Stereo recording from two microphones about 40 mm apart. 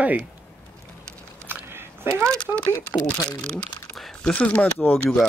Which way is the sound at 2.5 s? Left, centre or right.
Right.